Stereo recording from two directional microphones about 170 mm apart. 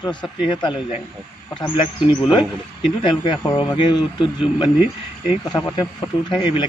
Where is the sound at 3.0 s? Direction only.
25° left (ahead or behind).